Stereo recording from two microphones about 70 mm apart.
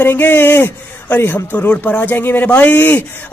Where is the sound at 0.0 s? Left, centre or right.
Left.